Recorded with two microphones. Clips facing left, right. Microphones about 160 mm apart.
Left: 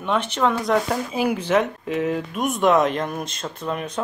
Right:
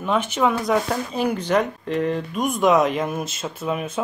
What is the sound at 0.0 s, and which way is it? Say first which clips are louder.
Speech: right 1 dB; 5° right (ahead or behind).